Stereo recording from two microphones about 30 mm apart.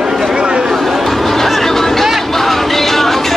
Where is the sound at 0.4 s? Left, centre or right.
Right.